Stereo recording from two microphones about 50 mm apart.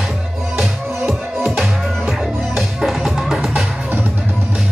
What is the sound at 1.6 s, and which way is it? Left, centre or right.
Music, centre.